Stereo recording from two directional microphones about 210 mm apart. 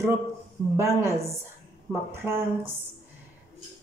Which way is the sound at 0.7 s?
15° right (ahead or behind).